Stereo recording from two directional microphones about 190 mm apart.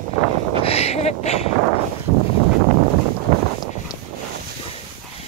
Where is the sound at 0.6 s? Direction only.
35° left (ahead or behind).